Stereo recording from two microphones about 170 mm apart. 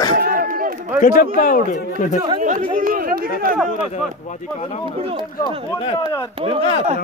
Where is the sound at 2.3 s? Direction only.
50° right (ahead or behind).